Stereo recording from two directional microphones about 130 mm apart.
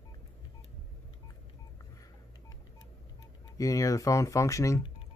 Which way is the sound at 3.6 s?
25° left (ahead or behind).